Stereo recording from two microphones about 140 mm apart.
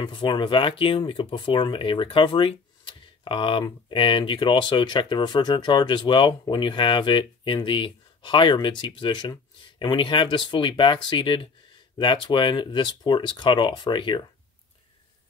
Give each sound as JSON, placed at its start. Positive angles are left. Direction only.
{"t": 0.0, "sound": "speech", "side_deg": 35}